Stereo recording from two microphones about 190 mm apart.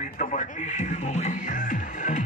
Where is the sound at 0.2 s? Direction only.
40° left (ahead or behind).